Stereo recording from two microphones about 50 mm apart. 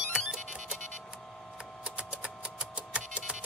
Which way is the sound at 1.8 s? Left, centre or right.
Right.